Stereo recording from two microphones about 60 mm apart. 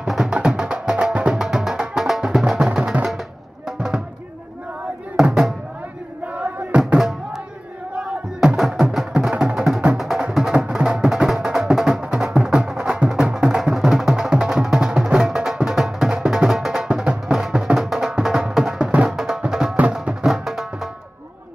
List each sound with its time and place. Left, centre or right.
0.0 s music: centre
5.1 s music: centre
6.2 s music: right
8.5 s music: centre
9.9 s music: centre
19.0 s music: centre
20.2 s music: centre